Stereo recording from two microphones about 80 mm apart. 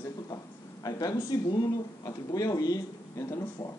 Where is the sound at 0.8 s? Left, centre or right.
Left.